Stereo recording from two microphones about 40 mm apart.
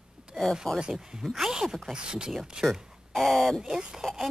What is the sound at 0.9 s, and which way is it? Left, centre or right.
Speech, centre.